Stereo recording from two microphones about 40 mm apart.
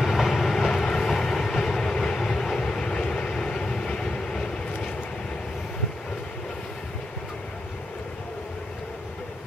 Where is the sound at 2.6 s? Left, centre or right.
Centre.